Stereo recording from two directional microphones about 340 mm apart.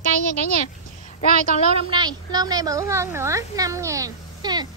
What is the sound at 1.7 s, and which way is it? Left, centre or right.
A woman's voice, centre.